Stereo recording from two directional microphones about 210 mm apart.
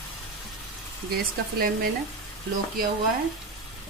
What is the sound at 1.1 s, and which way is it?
Speech, 45° right (ahead or behind).